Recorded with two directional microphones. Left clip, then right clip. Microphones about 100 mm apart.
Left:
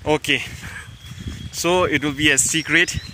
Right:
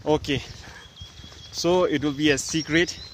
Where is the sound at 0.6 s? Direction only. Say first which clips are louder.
Left 9 dB; 20° right (ahead or behind).